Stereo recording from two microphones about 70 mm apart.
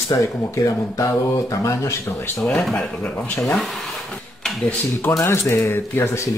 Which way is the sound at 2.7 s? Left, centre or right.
Left.